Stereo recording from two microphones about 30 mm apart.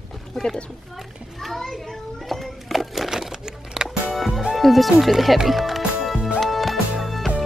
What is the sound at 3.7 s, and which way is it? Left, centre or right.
Music, right.